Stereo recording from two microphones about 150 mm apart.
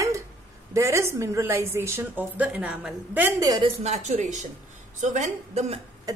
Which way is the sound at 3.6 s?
50° right (ahead or behind).